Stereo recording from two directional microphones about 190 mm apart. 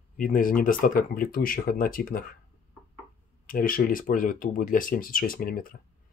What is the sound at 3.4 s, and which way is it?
Speech, 50° left (ahead or behind).